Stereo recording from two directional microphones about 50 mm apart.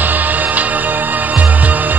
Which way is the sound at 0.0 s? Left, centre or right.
Right.